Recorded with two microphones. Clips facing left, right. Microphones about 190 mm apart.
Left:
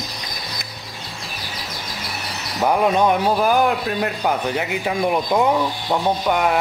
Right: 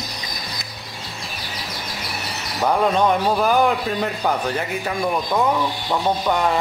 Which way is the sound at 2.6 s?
10° left (ahead or behind).